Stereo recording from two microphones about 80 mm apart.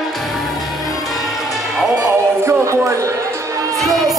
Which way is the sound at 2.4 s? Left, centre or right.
Right.